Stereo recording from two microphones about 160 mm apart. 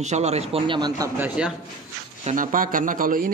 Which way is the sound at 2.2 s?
55° right (ahead or behind).